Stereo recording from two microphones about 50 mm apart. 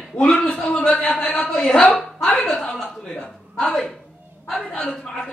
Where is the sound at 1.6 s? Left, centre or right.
Left.